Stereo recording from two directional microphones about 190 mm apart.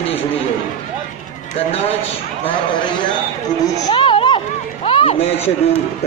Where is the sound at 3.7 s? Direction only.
25° left (ahead or behind).